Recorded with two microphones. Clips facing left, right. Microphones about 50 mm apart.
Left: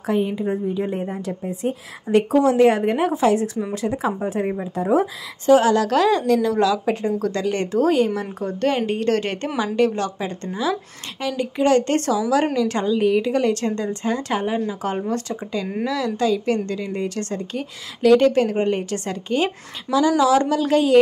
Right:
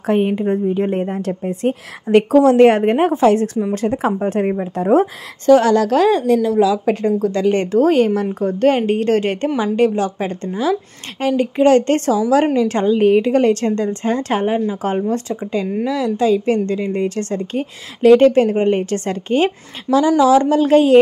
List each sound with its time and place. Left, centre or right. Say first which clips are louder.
0.0 s a woman's voice: right 5 dB; right
1.5 s a woman's voice: right 5 dB; right
5.9 s a woman's voice: right 3 dB; right; by 6.8 s centre
6.9 s a woman's voice: right 5 dB; right
7.3 s a woman's voice: right 6 dB; right